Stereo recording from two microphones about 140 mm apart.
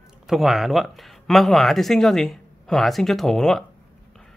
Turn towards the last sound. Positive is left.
turn(degrees=5)  # may be behind; listen again after turning